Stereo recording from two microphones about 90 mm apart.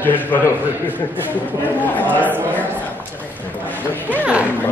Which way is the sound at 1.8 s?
20° left (ahead or behind).